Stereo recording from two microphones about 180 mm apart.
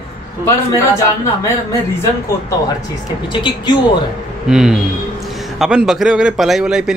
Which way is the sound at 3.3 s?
25° left (ahead or behind).